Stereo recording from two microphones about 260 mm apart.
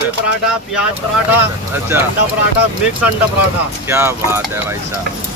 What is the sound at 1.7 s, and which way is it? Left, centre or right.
Speech, centre.